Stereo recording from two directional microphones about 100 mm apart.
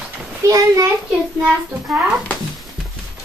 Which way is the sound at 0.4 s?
35° right (ahead or behind).